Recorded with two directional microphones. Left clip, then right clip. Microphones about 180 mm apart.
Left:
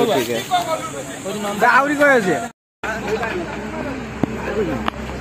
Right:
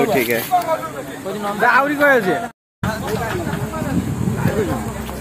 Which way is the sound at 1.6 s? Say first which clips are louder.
Even; 50° left (ahead or behind).